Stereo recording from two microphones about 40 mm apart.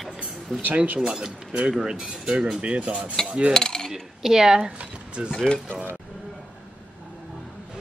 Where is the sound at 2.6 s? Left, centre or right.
Right.